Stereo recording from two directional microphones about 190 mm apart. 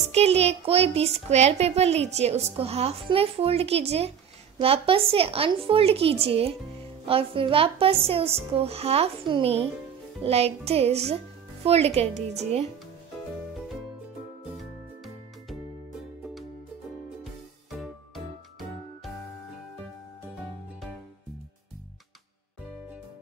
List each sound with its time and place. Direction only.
0.1 s a child's voice: 35° right (ahead or behind)
17.2 s music: centre (ahead or behind)